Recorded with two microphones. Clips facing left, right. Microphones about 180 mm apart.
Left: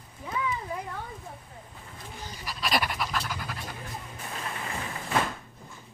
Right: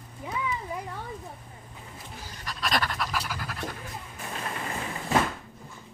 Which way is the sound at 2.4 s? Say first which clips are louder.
Even; 5° left (ahead or behind).